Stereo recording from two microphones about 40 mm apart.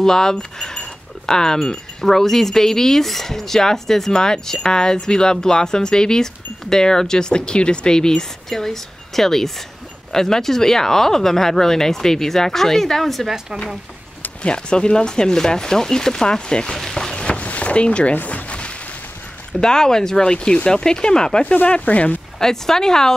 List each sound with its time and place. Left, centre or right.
0.0 s speech: centre
14.4 s speech: left
16.7 s a sound: centre
17.1 s boat: left
17.4 s boat: left
18.1 s a sound: left
19.6 s speech: centre
21.6 s speech: left
22.4 s speech: centre